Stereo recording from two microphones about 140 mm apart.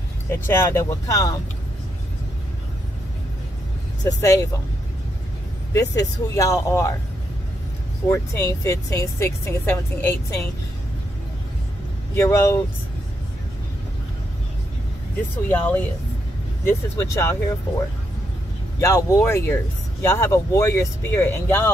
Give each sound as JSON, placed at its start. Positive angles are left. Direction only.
{"t": 0.3, "sound": "speech", "side_deg": 15}
{"t": 4.2, "sound": "speech", "side_deg": 25}
{"t": 5.7, "sound": "speech", "side_deg": 25}
{"t": 8.1, "sound": "speech", "side_deg": 20}
{"t": 12.2, "sound": "speech", "side_deg": 20}
{"t": 15.4, "sound": "speech", "side_deg": 15}